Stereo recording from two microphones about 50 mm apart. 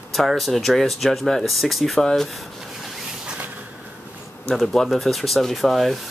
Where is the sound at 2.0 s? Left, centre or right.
Centre.